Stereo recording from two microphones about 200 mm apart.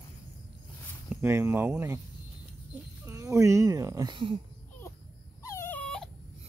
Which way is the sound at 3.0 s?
15° right (ahead or behind).